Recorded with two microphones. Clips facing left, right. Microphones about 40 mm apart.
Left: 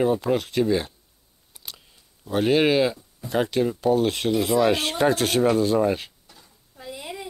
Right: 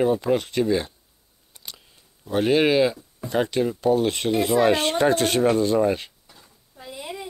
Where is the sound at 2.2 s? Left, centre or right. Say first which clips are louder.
Even; centre.